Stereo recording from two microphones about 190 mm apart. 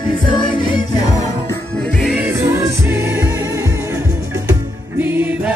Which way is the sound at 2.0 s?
Centre (ahead or behind).